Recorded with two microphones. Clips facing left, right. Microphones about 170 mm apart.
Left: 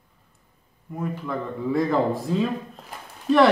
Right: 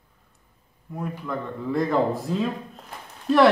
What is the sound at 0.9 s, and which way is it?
Speech, 5° left (ahead or behind).